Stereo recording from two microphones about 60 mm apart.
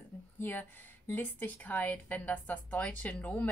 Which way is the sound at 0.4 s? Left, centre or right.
Left.